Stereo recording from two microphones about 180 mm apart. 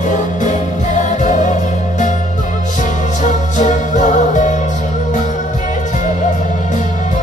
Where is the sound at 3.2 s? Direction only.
40° left (ahead or behind).